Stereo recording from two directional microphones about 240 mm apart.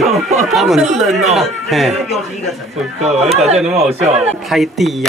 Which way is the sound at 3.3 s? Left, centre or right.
Right.